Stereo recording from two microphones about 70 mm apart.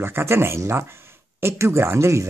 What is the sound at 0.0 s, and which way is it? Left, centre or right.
Speech, right.